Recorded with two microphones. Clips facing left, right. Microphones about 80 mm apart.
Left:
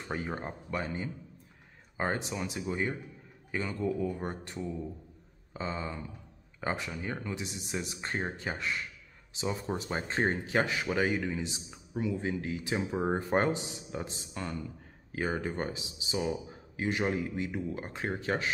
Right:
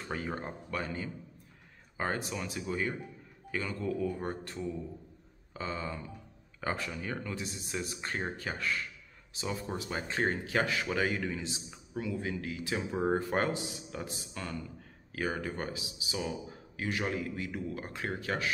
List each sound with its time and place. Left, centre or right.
0.1 s a man's voice: centre
5.5 s a sound: left
6.6 s a man's voice: centre